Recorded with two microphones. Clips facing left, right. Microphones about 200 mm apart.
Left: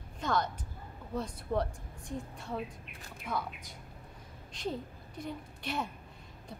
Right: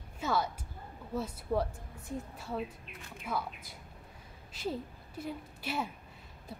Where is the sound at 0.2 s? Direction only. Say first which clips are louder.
Even; 5° right (ahead or behind).